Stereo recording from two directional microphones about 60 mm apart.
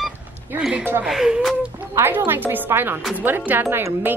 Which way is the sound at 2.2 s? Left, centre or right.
Right.